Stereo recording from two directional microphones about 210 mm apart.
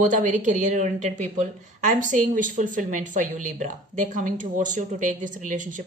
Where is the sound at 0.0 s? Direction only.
35° right (ahead or behind).